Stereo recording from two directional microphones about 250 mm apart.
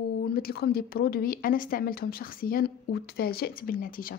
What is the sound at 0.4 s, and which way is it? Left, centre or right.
Speech, left.